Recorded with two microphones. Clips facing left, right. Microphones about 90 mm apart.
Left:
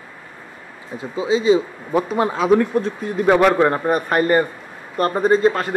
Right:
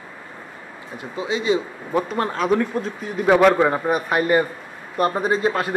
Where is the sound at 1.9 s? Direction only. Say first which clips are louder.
Left 3 dB; 10° left (ahead or behind).